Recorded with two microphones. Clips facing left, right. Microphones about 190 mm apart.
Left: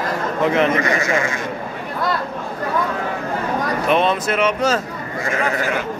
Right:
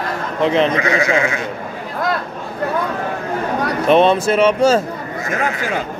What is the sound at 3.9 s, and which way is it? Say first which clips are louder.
Speech: right 6 dB; 30° right (ahead or behind).